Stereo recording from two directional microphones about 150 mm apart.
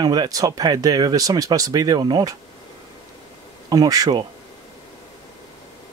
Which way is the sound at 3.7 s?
25° right (ahead or behind).